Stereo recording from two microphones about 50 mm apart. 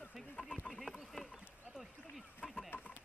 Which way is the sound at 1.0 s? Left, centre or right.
Centre.